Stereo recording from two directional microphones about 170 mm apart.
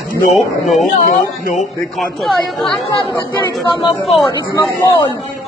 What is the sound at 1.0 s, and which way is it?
Speech, 50° left (ahead or behind).